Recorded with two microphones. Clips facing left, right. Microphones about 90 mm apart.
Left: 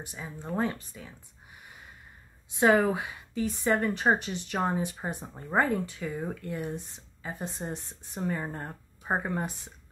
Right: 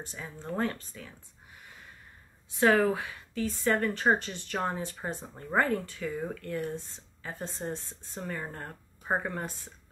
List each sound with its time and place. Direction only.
0.0 s a woman's voice: 15° left (ahead or behind)
2.5 s a woman's voice: 15° left (ahead or behind)